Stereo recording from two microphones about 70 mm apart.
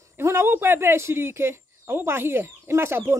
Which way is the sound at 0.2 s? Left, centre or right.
Right.